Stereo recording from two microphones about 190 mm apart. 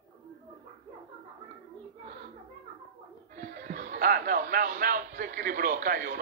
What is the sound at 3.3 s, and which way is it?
Speech, 50° right (ahead or behind).